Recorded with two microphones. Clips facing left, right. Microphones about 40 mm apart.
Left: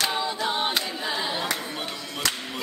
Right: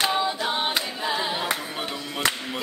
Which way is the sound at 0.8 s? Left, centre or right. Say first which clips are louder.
Right 2 dB; centre.